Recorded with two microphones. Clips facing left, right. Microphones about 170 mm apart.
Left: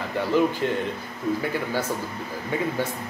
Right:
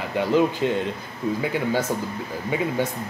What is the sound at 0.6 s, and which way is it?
Speech, 15° right (ahead or behind).